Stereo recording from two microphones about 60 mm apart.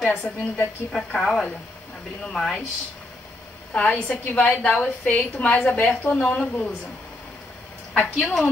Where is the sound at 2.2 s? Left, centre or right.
Centre.